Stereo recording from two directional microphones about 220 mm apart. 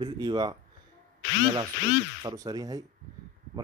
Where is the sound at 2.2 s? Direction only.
15° right (ahead or behind).